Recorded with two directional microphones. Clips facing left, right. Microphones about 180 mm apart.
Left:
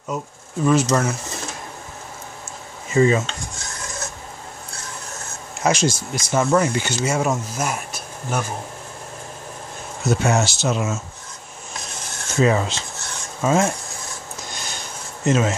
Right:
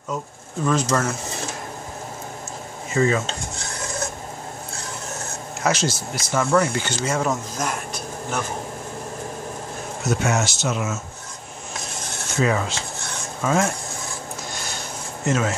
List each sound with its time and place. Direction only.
0.7 s speech: 15° left (ahead or behind)
2.9 s speech: 25° left (ahead or behind)
5.6 s speech: 15° left (ahead or behind)
6.9 s speech: 10° left (ahead or behind)
10.0 s speech: 30° left (ahead or behind)
12.4 s filing: 25° left (ahead or behind)
13.4 s speech: 25° left (ahead or behind)
15.2 s filing: 20° left (ahead or behind)